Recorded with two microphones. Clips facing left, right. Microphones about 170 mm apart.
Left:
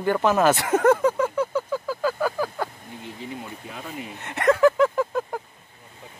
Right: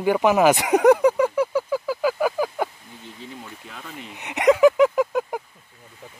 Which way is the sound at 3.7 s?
10° left (ahead or behind).